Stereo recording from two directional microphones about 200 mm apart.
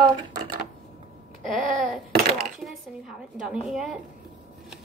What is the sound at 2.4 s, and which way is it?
Speech, centre (ahead or behind).